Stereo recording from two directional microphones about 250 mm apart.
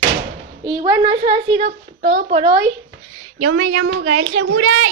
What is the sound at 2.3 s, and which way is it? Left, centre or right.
Speech, right.